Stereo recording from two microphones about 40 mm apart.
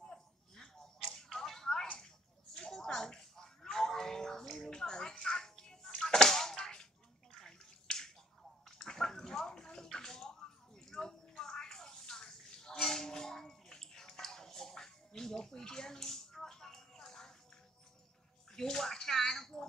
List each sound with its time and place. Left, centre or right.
1.1 s a sound: centre
5.1 s music: left
5.4 s music: centre
5.9 s whip: centre
7.3 s bathtub: centre
10.9 s a sound: centre
18.5 s bathtub: centre